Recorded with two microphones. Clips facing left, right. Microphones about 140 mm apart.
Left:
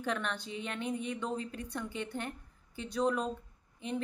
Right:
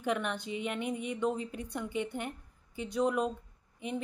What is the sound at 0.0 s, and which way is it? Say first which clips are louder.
Speech: right 3 dB; 15° right (ahead or behind).